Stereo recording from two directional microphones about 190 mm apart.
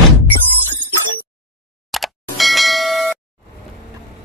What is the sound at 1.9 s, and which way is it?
Ding, centre (ahead or behind).